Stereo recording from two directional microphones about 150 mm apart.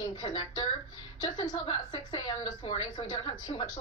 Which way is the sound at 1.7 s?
30° left (ahead or behind).